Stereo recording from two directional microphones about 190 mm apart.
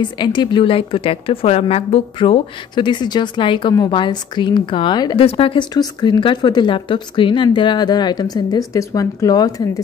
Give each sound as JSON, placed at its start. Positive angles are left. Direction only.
{"t": 0.0, "sound": "a woman's voice", "side_deg": 25}